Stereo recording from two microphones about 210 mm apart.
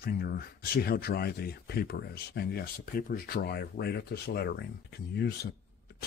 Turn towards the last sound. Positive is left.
turn(degrees=50)  # may be behind; listen again after turning